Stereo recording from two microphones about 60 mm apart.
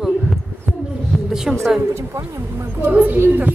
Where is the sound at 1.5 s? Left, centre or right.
Centre.